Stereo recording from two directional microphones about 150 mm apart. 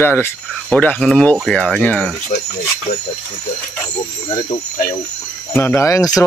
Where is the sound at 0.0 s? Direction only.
15° left (ahead or behind).